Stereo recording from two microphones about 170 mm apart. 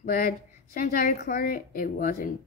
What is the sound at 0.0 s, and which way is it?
A woman's voice, 60° left (ahead or behind).